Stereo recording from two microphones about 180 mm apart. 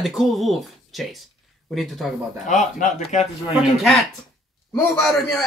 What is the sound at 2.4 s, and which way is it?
A man's voice, 40° left (ahead or behind).